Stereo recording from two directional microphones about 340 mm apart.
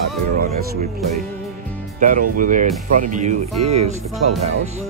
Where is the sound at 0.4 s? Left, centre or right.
Right.